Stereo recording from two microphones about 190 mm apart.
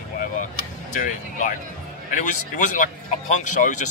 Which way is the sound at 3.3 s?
40° left (ahead or behind).